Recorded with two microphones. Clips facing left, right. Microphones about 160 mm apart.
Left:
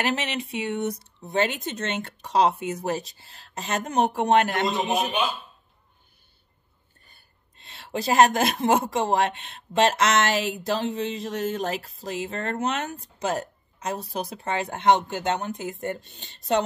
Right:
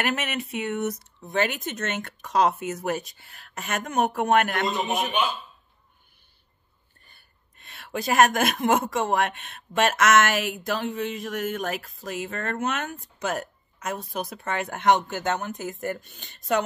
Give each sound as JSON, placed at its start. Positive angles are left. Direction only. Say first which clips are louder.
{"t": 0.0, "sound": "speech", "louder": "left 1 dB", "side_deg": 30}
{"t": 7.5, "sound": "a sound", "louder": "left 1 dB", "side_deg": 25}
{"t": 8.4, "sound": "speech", "louder": "left 1 dB", "side_deg": 30}
{"t": 10.3, "sound": "speech", "louder": "left 2 dB", "side_deg": 20}
{"t": 11.3, "sound": "speech", "louder": "left 2 dB", "side_deg": 30}
{"t": 13.8, "sound": "speech", "louder": "left 1 dB", "side_deg": 35}
{"t": 14.4, "sound": "speech", "louder": "left 1 dB", "side_deg": 20}